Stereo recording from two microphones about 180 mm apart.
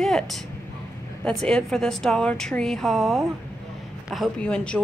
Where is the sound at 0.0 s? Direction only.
Centre (ahead or behind).